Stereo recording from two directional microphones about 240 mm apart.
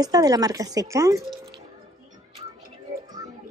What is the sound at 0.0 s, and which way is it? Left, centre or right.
A woman's voice, centre.